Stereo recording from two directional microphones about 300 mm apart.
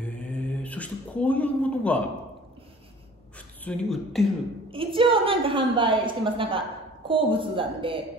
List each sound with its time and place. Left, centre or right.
0.0 s mantra: centre
3.3 s speech: centre
4.6 s a woman's voice: centre